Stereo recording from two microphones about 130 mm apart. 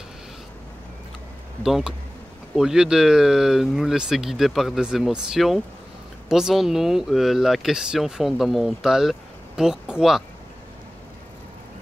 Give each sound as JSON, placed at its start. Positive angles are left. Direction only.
{"t": 1.6, "sound": "speech", "side_deg": -5}